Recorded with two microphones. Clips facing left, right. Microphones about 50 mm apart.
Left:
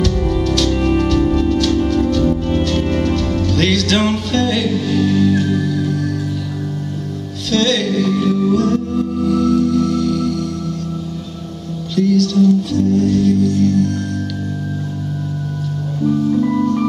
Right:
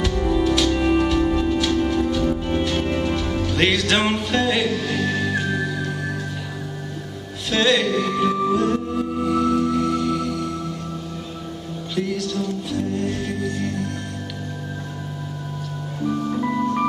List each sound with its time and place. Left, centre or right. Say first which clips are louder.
0.0 s music: left 2 dB; centre
7.5 s music: left 3 dB; centre
11.9 s music: left 10 dB; centre
16.3 s music: left 7 dB; centre